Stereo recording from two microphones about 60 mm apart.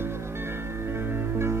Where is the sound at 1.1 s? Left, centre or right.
Right.